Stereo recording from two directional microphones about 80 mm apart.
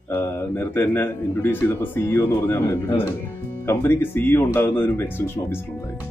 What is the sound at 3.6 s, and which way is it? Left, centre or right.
Speech, left.